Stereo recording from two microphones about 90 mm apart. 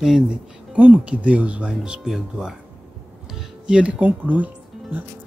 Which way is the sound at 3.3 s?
10° right (ahead or behind).